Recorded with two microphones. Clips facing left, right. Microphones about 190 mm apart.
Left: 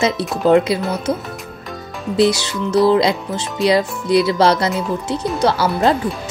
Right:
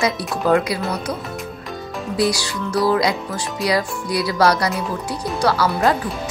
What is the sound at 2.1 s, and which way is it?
Speech, 25° left (ahead or behind).